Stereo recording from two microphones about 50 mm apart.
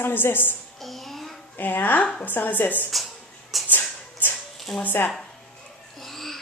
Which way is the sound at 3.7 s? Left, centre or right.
Left.